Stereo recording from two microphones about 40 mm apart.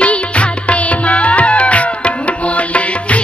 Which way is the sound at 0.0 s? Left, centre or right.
Left.